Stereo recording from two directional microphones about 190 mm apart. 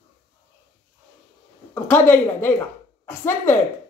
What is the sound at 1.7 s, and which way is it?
A woman's voice, 10° left (ahead or behind).